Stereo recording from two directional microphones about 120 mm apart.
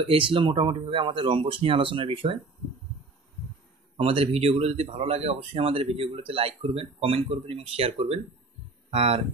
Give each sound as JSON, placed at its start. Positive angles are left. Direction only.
{"t": 0.0, "sound": "speech", "side_deg": -45}
{"t": 4.0, "sound": "speech", "side_deg": -55}